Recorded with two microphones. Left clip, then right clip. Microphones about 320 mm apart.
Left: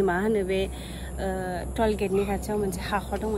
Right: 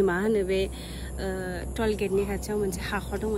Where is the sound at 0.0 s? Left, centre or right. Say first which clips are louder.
Even; centre.